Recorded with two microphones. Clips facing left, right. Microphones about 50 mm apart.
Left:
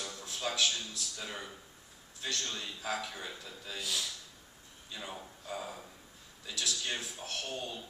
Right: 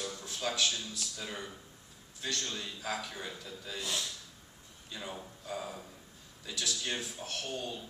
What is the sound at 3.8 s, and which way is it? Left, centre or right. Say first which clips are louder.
Speech: even; right.